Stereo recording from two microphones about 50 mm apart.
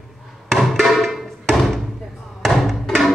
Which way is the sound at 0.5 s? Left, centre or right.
Centre.